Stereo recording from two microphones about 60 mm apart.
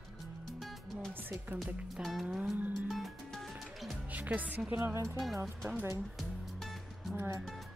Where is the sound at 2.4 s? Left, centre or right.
Right.